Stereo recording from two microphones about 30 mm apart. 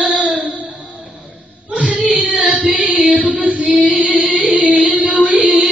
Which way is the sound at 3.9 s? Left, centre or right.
Right.